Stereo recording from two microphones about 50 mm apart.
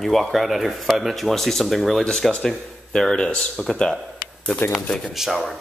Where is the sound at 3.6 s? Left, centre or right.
Centre.